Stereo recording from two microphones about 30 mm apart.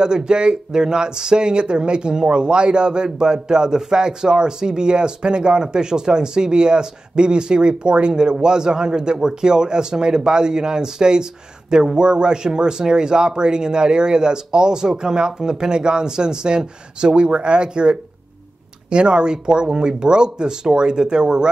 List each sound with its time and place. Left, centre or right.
0.0 s speech: right